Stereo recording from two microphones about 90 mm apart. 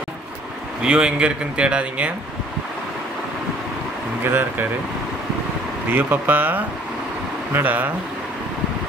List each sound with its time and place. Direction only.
0.8 s a man's voice: 10° right (ahead or behind)
4.2 s speech: 25° right (ahead or behind)
5.9 s speech: 20° right (ahead or behind)